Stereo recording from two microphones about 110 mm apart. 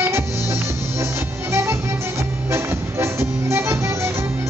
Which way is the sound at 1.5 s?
25° right (ahead or behind).